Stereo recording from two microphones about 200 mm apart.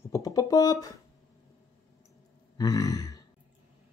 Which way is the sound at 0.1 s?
15° left (ahead or behind).